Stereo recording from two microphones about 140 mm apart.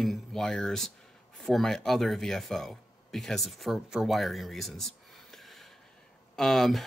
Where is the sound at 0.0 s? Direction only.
Centre (ahead or behind).